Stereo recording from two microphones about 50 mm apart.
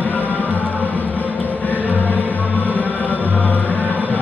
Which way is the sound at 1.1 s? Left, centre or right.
Left.